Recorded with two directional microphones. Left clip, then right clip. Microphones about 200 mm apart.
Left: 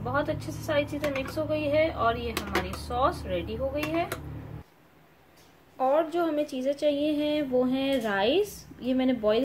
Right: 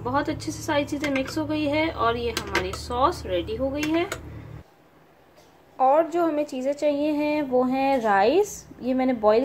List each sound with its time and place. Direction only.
0.0 s a woman's voice: 50° right (ahead or behind)
5.8 s a woman's voice: 10° right (ahead or behind)